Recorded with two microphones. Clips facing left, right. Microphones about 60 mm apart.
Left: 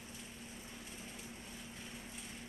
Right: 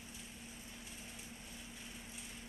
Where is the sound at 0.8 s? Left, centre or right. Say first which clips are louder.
Left 2 dB; left.